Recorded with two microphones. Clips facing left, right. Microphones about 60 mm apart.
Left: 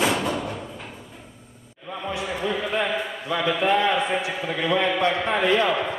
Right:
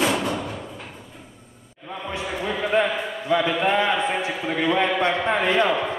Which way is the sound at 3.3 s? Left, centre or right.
Centre.